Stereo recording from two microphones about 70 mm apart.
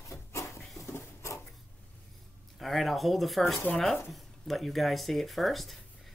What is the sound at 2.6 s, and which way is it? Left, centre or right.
Speech, centre.